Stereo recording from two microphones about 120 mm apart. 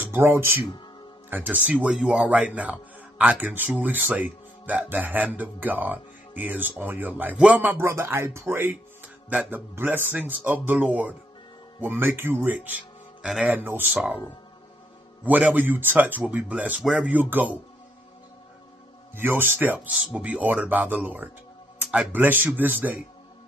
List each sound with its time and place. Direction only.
0.0 s a man's voice: 20° right (ahead or behind)
15.2 s a man's voice: 15° right (ahead or behind)
19.1 s a man's voice: 15° right (ahead or behind)